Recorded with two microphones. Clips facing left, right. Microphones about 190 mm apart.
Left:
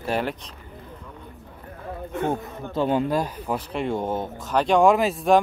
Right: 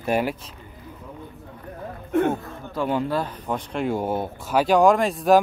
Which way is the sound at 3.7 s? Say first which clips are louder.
Right 3 dB; centre (ahead or behind).